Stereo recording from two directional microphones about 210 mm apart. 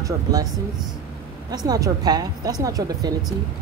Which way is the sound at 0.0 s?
15° right (ahead or behind).